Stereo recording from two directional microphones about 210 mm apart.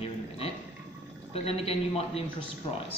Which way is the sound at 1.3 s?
30° left (ahead or behind).